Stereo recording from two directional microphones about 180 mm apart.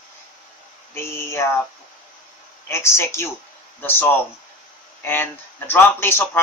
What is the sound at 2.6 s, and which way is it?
Speech, 15° left (ahead or behind).